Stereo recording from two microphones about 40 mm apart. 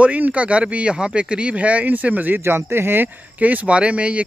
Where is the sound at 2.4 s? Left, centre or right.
Right.